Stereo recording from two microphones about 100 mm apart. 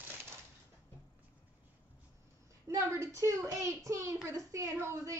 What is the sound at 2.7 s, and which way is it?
A child's voice, 30° right (ahead or behind).